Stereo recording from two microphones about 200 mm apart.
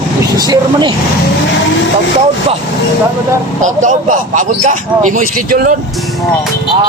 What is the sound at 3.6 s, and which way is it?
A man's voice, 40° right (ahead or behind).